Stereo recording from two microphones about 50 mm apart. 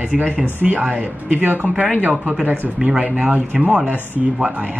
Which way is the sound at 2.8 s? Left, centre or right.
Centre.